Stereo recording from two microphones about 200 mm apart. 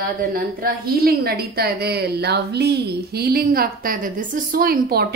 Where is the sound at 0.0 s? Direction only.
50° right (ahead or behind).